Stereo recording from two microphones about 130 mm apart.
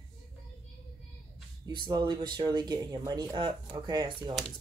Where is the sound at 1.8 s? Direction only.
35° right (ahead or behind).